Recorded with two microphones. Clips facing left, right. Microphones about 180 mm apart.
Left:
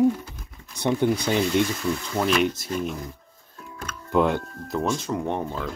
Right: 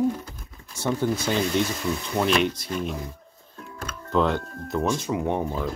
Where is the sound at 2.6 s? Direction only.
45° left (ahead or behind).